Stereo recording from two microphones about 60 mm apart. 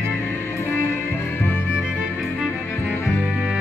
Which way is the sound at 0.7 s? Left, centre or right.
Left.